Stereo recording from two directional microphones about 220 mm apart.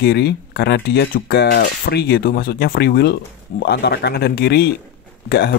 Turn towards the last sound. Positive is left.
turn(degrees=45)  # may be behind; listen again after turning